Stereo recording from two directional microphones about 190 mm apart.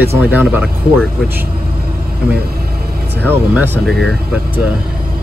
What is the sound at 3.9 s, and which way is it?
Speech, centre (ahead or behind).